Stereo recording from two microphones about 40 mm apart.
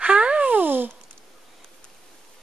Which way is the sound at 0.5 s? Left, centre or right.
Right.